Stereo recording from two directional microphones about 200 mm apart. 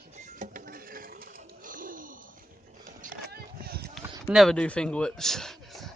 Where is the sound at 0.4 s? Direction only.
40° right (ahead or behind).